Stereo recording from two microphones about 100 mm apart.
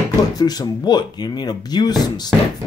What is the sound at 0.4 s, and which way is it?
Speech, 40° left (ahead or behind).